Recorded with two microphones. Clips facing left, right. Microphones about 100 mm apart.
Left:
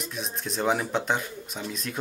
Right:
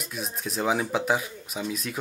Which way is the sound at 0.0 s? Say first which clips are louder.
Even; 5° right (ahead or behind).